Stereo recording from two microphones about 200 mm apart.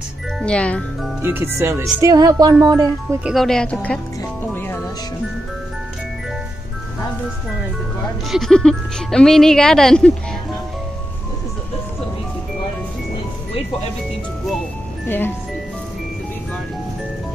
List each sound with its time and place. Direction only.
0.4 s speech: 5° left (ahead or behind)
1.2 s speech: 10° right (ahead or behind)
3.3 s speech: centre (ahead or behind)
4.2 s music: 10° left (ahead or behind)
8.3 s speech: centre (ahead or behind)
15.0 s speech: 10° left (ahead or behind)